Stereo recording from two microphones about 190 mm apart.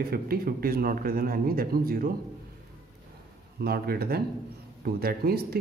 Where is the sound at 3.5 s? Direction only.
55° right (ahead or behind).